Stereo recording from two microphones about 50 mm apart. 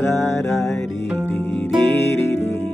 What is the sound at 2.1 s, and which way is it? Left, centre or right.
Music, left.